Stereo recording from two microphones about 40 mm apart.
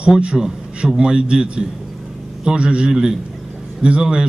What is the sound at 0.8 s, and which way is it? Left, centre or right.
A man's voice, right.